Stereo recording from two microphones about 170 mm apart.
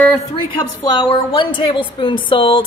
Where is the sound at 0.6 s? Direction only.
30° left (ahead or behind).